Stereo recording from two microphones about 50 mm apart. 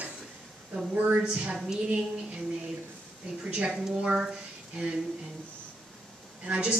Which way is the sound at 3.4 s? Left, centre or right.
Right.